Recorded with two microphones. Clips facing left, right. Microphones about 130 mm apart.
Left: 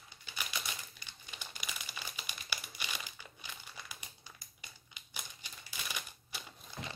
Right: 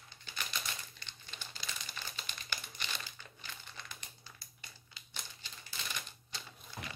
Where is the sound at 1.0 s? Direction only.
15° left (ahead or behind).